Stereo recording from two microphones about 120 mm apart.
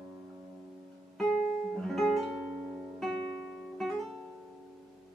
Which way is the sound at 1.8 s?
Centre (ahead or behind).